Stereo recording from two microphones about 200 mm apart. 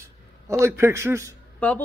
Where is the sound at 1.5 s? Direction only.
5° left (ahead or behind).